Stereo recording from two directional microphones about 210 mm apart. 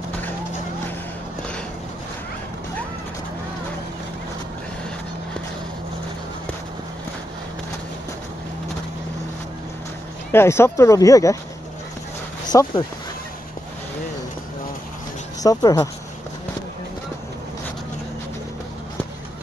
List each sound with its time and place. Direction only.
10.3 s speech: 10° left (ahead or behind)
12.4 s speech: 20° left (ahead or behind)
15.4 s speech: 15° left (ahead or behind)